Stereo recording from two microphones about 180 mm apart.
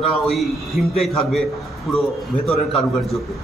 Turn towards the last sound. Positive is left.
turn(degrees=0)  # may be behind; listen again after turning